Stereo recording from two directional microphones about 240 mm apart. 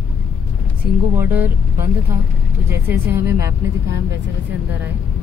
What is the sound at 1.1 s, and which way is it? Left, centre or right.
A woman's voice, centre.